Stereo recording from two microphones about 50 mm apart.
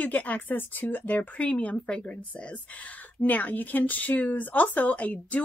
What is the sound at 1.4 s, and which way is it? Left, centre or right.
A woman's voice, left.